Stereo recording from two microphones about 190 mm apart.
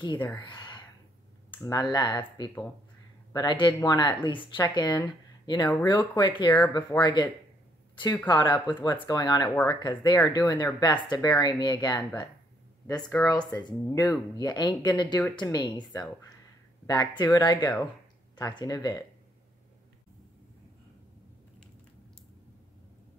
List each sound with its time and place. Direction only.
0.5 s a sound: 25° left (ahead or behind)
1.6 s speech: 20° left (ahead or behind)
8.3 s speech: 25° left (ahead or behind)